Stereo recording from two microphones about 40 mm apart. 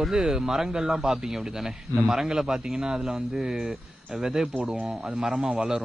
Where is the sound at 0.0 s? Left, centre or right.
Centre.